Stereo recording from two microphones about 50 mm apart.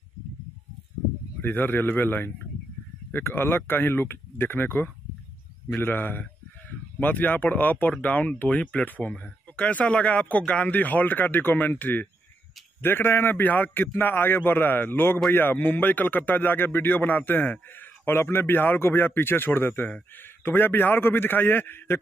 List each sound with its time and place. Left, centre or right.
1.4 s a man's voice: left
8.8 s a man's voice: left